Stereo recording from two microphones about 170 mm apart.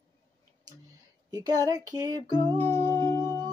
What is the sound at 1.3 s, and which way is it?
Music, 20° right (ahead or behind).